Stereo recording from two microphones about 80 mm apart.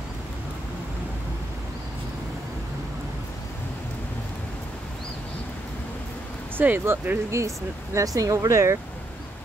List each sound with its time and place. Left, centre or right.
6.6 s speech: right
7.2 s speech: right